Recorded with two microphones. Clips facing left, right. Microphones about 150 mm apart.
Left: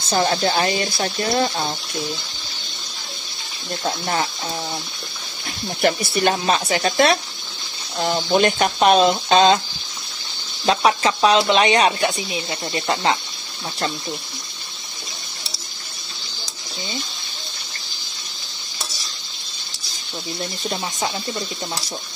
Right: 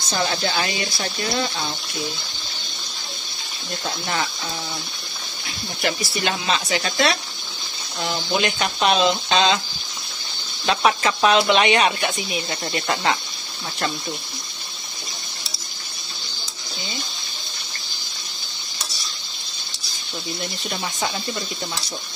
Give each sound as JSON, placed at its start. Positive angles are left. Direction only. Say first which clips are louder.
{"t": 0.1, "sound": "speech", "louder": "left 5 dB", "side_deg": 35}
{"t": 3.8, "sound": "speech", "louder": "left 4 dB", "side_deg": 35}
{"t": 5.8, "sound": "speech", "louder": "left 6 dB", "side_deg": 45}
{"t": 10.8, "sound": "speech", "louder": "even", "side_deg": 25}
{"t": 20.6, "sound": "speech", "louder": "left 2 dB", "side_deg": 30}